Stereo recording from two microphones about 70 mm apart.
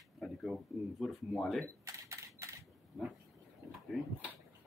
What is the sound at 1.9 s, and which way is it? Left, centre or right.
Camera, right.